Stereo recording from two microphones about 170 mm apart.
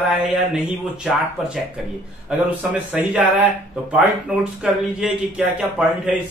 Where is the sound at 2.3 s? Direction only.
5° right (ahead or behind).